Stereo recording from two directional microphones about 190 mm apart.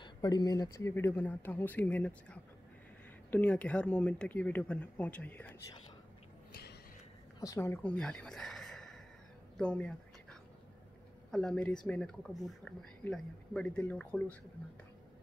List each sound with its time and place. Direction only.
0.0 s speech: 20° left (ahead or behind)
6.5 s a sound: 60° left (ahead or behind)
7.3 s speech: 15° left (ahead or behind)
11.3 s speech: 5° left (ahead or behind)